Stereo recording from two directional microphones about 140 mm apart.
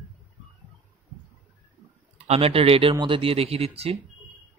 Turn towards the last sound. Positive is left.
turn(degrees=-45)  # may be behind; listen again after turning